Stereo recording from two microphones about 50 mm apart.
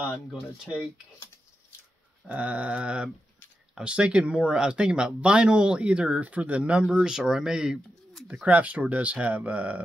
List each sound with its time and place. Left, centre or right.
2.2 s speech: right
7.0 s speech: centre
8.5 s speech: right